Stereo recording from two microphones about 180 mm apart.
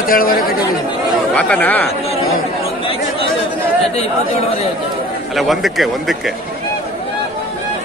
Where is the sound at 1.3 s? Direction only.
10° left (ahead or behind).